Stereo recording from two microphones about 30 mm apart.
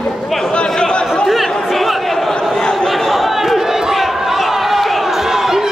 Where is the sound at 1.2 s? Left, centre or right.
Centre.